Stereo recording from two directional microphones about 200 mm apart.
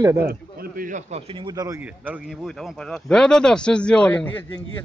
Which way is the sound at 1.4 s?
20° right (ahead or behind).